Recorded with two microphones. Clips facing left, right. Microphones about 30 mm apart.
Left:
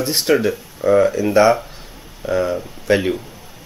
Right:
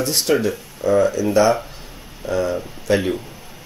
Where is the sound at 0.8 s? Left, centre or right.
Left.